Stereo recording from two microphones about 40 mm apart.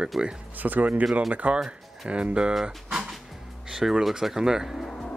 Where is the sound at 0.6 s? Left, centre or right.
Right.